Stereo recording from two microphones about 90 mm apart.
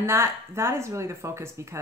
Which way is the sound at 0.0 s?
30° right (ahead or behind).